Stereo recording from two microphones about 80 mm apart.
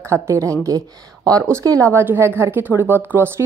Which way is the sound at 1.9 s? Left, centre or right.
Right.